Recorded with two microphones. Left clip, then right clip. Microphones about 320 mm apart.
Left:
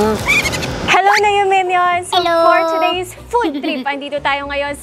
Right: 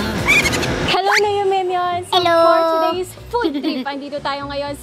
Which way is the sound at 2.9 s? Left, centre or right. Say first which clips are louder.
Left 4 dB; centre.